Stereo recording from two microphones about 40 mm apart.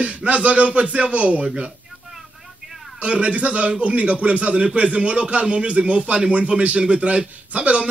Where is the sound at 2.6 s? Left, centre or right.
Centre.